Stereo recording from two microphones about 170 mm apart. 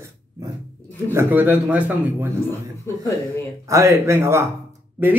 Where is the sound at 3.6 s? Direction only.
15° right (ahead or behind).